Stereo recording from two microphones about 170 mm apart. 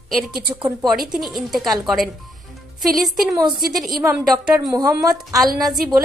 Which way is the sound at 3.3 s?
25° right (ahead or behind).